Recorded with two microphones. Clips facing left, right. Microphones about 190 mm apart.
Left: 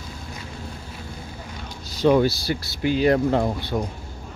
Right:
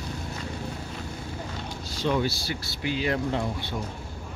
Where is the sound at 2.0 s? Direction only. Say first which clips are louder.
Left 8 dB; 45° left (ahead or behind).